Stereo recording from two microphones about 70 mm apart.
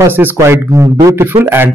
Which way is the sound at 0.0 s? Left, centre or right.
Right.